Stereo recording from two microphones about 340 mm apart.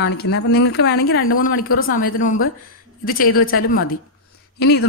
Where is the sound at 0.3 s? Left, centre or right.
Left.